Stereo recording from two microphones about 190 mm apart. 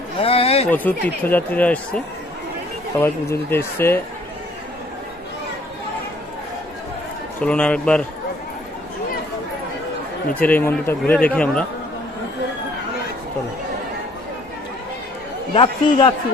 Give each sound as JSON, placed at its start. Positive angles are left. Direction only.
{"t": 0.2, "sound": "a sound", "side_deg": 30}
{"t": 0.7, "sound": "speech", "side_deg": 10}
{"t": 3.0, "sound": "speech", "side_deg": 10}
{"t": 7.3, "sound": "a man's voice", "side_deg": 5}
{"t": 10.3, "sound": "speech", "side_deg": 10}
{"t": 15.5, "sound": "a man's voice", "side_deg": 25}